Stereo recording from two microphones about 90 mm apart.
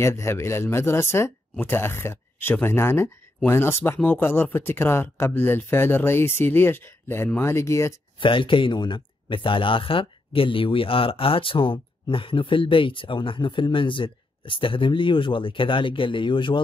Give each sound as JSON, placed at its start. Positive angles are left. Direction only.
{"t": 0.0, "sound": "speech", "side_deg": 30}
{"t": 8.2, "sound": "speech", "side_deg": 70}